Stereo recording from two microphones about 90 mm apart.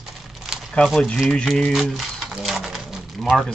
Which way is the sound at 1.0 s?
5° left (ahead or behind).